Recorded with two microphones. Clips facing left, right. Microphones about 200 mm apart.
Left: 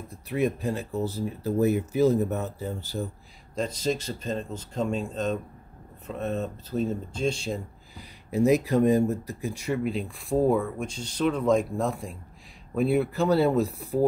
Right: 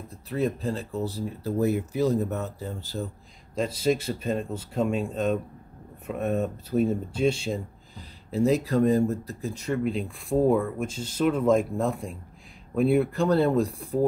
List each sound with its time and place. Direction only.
0.3 s speech: 15° left (ahead or behind)
3.5 s speech: 5° right (ahead or behind)
7.9 s speech: 15° left (ahead or behind)